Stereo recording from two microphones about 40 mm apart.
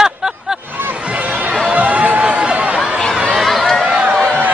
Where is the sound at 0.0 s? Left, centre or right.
Centre.